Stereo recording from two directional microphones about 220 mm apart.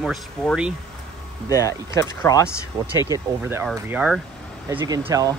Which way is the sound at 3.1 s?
10° right (ahead or behind).